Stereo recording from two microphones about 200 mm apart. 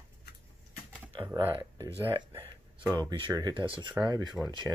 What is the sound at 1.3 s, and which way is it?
Speech, 20° right (ahead or behind).